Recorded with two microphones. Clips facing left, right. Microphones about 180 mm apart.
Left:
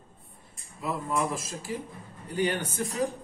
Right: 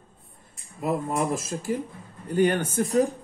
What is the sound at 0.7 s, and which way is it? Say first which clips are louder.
A man's voice: right 4 dB; 50° right (ahead or behind).